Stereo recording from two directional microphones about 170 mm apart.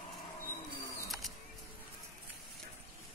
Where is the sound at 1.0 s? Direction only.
Centre (ahead or behind).